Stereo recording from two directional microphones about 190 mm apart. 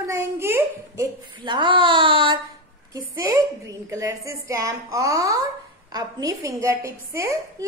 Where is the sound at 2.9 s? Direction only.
15° right (ahead or behind).